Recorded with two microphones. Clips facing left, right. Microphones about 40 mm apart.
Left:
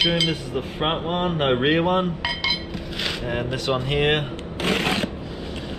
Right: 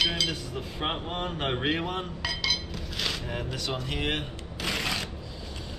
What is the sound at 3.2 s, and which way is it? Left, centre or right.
Speech, left.